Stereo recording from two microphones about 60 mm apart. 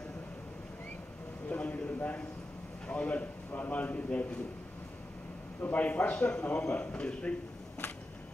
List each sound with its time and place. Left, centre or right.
1.5 s a sound: left
2.9 s a man's voice: left
5.6 s a man's voice: left